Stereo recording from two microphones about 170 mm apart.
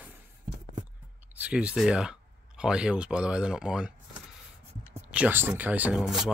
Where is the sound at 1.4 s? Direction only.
5° right (ahead or behind).